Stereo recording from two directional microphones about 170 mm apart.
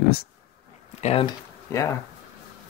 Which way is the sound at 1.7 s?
15° left (ahead or behind).